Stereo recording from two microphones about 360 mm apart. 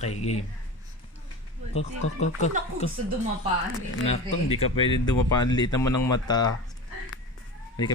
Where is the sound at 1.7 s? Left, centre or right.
Centre.